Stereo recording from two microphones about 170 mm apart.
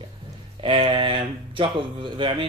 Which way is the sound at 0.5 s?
30° right (ahead or behind).